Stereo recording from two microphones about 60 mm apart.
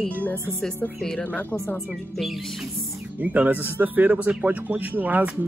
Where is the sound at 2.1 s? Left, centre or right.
Centre.